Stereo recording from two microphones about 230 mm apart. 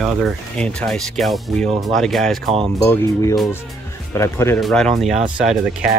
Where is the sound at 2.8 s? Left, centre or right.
Centre.